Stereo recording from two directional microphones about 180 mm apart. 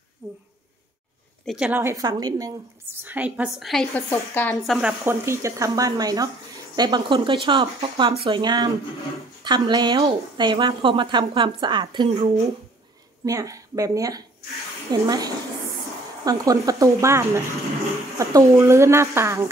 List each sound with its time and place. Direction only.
0.2 s a woman's voice: 15° right (ahead or behind)
1.4 s a woman's voice: 5° right (ahead or behind)
4.1 s a woman's voice: 10° left (ahead or behind)
5.0 s speech: 15° right (ahead or behind); by 12.4 s 35° right (ahead or behind)
13.2 s a woman's voice: 20° right (ahead or behind)